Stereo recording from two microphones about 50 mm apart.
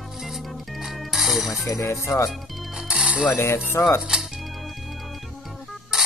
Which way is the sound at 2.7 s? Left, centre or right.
Centre.